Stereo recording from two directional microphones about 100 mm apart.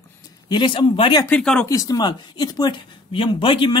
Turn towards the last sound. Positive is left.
turn(degrees=55)  # may be behind; listen again after turning